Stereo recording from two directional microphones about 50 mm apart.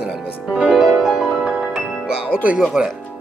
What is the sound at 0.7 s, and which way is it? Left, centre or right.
Music, centre.